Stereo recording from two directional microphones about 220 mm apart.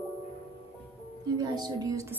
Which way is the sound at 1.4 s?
20° right (ahead or behind).